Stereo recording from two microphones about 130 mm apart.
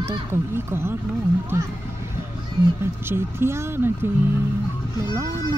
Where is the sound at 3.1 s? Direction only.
20° right (ahead or behind).